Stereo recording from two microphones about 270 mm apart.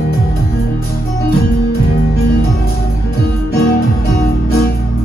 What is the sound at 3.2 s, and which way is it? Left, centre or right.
Music, left.